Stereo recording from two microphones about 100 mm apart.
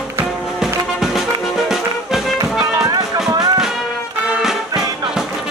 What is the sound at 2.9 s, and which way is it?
Music, 40° right (ahead or behind).